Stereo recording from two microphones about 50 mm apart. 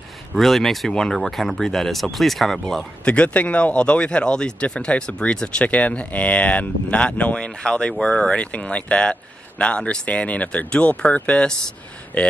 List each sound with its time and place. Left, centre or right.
0.3 s speech: centre
3.1 s speech: left